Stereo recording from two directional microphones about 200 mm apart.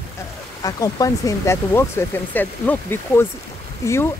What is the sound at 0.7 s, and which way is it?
Speech, 20° left (ahead or behind).